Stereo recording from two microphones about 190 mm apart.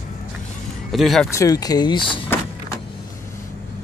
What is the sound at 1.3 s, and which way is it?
Speech, 20° left (ahead or behind).